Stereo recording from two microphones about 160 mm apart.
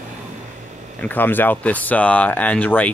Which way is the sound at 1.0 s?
10° left (ahead or behind).